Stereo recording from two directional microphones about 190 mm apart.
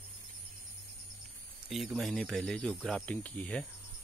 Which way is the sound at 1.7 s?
Centre (ahead or behind).